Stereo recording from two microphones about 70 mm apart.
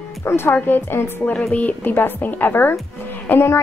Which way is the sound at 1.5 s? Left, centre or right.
Left.